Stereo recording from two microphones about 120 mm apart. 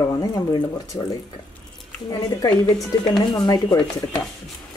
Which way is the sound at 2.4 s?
30° left (ahead or behind).